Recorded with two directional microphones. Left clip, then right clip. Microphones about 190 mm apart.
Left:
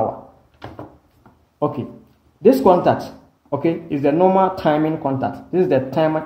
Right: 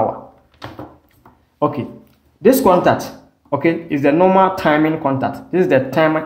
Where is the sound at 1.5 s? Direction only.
5° left (ahead or behind).